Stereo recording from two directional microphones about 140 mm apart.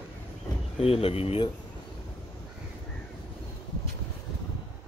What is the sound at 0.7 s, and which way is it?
Speech, 45° left (ahead or behind).